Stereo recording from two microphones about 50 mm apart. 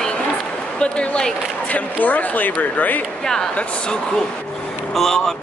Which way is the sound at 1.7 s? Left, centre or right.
Left.